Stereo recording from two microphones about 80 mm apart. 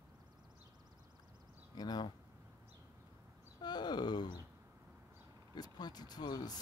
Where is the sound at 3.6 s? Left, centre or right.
Left.